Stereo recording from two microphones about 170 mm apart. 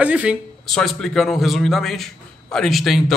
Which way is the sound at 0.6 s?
5° left (ahead or behind).